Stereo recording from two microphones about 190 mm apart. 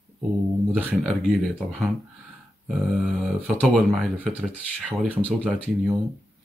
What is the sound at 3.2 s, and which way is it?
Speech, 5° right (ahead or behind).